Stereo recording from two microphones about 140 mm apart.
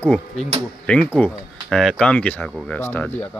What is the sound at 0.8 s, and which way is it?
Speech, 10° left (ahead or behind).